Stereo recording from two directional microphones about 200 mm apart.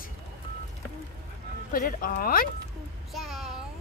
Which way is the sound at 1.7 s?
45° left (ahead or behind).